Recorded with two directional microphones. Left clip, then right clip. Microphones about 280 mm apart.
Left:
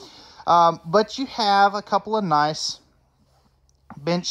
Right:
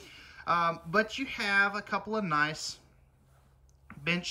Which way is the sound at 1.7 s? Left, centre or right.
Centre.